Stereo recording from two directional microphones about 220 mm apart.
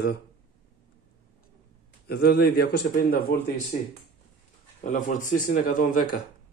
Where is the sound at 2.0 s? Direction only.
45° left (ahead or behind).